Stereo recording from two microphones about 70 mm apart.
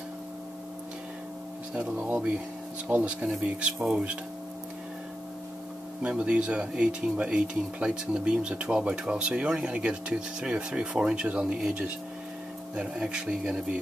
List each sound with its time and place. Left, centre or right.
2.1 s speech: centre
6.0 s speech: centre